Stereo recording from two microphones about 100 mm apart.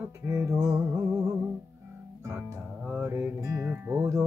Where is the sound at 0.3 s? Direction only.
30° right (ahead or behind).